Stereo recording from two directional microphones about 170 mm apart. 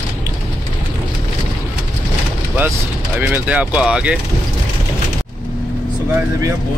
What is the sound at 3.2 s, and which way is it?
Speech, 10° right (ahead or behind).